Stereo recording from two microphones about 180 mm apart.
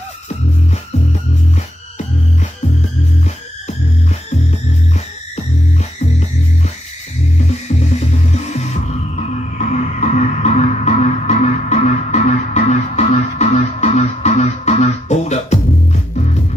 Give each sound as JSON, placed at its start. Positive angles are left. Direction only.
{"t": 8.0, "sound": "music", "side_deg": 40}
{"t": 9.7, "sound": "music", "side_deg": 40}